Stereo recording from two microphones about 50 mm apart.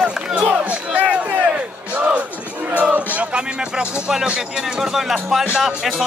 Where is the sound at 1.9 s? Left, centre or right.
Right.